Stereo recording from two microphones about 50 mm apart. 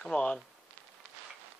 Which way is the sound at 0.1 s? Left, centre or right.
Left.